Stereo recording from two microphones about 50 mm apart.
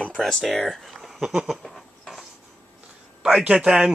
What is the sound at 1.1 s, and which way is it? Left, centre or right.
Speech, centre.